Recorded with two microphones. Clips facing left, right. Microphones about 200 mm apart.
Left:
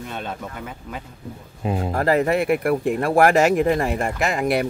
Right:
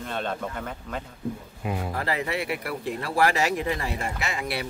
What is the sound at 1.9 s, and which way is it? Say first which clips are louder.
Speech: left 12 dB; 50° left (ahead or behind).